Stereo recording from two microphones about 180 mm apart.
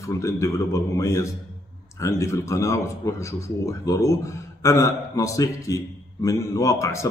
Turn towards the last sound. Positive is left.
turn(degrees=15)  # may be behind; listen again after turning